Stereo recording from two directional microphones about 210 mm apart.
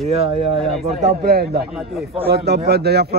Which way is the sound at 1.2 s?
45° right (ahead or behind).